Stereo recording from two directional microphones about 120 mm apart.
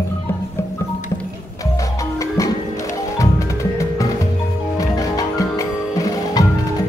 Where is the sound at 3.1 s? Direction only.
25° left (ahead or behind).